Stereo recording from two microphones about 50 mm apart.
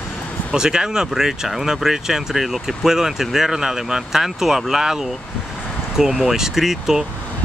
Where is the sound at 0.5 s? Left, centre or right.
Centre.